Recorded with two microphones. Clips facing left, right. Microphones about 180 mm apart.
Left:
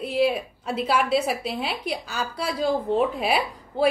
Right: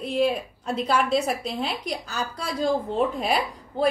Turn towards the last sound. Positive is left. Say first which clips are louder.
# left 1 dB
turn(degrees=5)  # may be behind; listen again after turning